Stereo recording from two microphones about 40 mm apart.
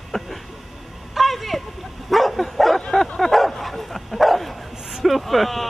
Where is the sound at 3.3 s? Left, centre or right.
Centre.